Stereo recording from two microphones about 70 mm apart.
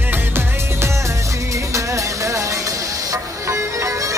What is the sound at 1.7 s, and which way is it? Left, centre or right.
Music, right.